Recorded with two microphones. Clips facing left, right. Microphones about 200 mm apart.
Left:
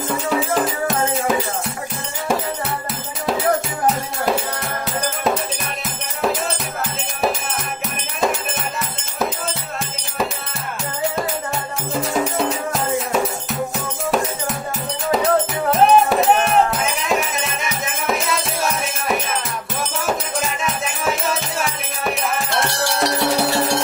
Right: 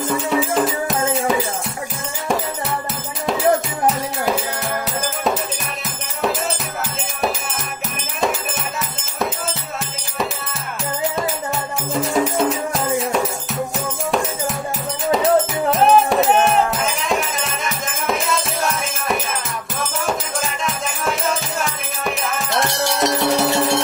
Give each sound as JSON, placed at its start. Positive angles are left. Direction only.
{"t": 0.3, "sound": "music", "side_deg": 0}
{"t": 11.9, "sound": "music", "side_deg": 0}
{"t": 20.1, "sound": "music", "side_deg": 0}
{"t": 23.0, "sound": "music", "side_deg": -20}